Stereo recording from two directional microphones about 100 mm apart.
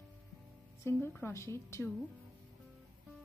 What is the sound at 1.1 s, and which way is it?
Speech, 25° left (ahead or behind).